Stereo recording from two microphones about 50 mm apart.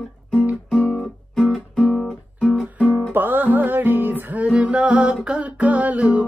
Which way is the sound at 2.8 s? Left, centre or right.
Right.